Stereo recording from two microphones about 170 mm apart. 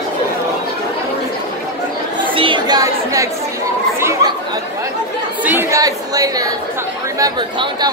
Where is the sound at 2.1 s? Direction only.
30° right (ahead or behind).